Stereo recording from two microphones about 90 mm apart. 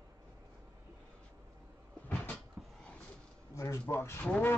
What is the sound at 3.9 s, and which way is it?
Speech, 25° left (ahead or behind).